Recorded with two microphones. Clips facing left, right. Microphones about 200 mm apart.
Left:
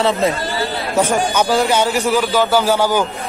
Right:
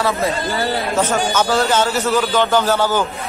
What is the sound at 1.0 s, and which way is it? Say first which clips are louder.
A man's voice: left 4 dB; 15° left (ahead or behind).